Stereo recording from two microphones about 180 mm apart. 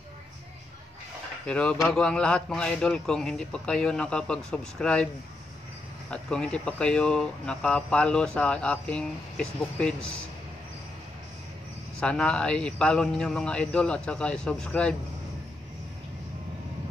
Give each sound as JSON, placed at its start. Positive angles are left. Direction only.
{"t": 1.4, "sound": "speech", "side_deg": 5}
{"t": 6.0, "sound": "speech", "side_deg": 5}
{"t": 12.0, "sound": "speech", "side_deg": 5}